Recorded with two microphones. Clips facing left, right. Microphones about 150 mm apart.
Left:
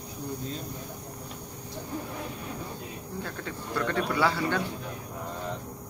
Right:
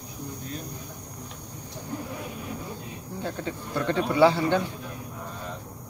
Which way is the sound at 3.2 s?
25° right (ahead or behind).